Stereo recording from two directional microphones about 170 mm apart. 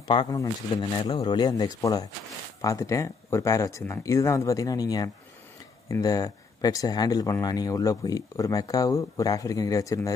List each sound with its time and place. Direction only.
0.0 s speech: 25° left (ahead or behind)